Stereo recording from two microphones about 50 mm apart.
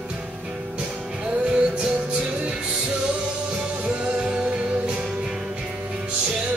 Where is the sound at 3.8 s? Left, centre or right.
Right.